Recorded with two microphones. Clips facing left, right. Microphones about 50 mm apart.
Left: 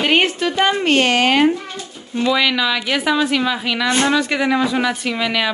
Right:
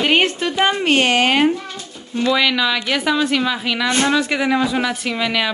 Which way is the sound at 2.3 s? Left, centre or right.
Centre.